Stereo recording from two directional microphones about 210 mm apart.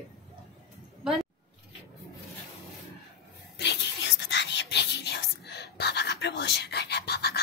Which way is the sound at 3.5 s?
55° left (ahead or behind).